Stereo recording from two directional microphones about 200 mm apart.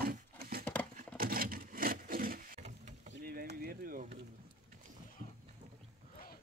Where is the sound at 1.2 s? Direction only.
45° right (ahead or behind).